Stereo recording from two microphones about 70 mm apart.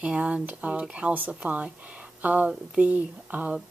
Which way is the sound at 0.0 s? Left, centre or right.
Centre.